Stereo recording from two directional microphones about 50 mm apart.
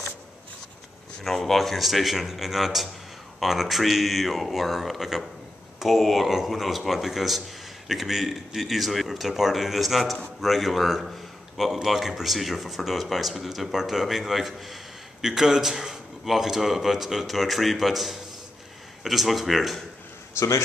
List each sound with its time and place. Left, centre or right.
1.2 s a man's voice: centre
20.3 s speech: left